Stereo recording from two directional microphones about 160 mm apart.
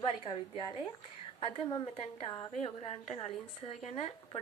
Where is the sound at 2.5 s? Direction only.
40° left (ahead or behind).